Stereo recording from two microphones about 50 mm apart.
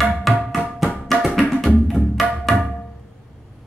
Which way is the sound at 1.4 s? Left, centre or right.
Centre.